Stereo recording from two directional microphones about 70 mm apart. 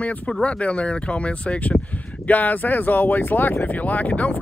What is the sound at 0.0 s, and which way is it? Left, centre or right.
Speech, centre.